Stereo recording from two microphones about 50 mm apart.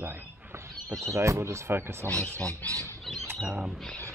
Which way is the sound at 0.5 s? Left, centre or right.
Right.